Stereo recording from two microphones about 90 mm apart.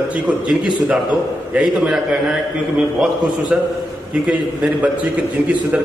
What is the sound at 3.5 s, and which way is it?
Speech, 15° right (ahead or behind).